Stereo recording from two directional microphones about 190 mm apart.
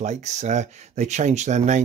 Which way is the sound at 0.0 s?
35° right (ahead or behind).